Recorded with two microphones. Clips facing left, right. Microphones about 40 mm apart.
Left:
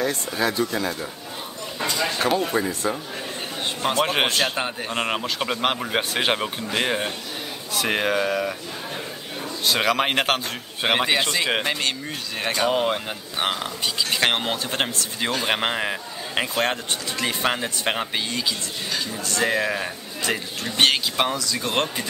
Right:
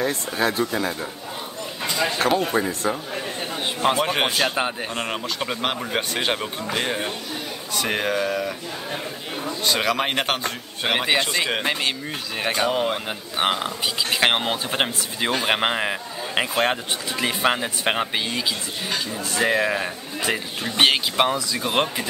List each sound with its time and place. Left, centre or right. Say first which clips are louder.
0.4 s speech: right 1 dB; right
2.2 s speech: right 1 dB; right
2.8 s speech: right 1 dB; centre
4.0 s speech: left 1 dB; centre
4.3 s a man's voice: right 1 dB; centre
4.9 s speech: left 2 dB; centre
9.7 s a man's voice: left 1 dB; centre
11.2 s a man's voice: even; centre
12.7 s a man's voice: left 1 dB; centre
13.4 s speech: right 3 dB; centre